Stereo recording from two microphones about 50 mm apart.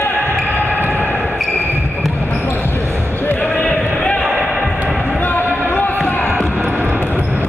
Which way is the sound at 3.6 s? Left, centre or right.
Left.